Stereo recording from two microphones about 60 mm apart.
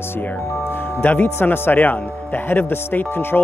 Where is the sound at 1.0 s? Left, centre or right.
Left.